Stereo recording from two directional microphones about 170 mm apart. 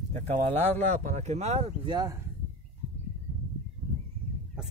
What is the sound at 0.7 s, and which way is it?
Speech, 40° right (ahead or behind).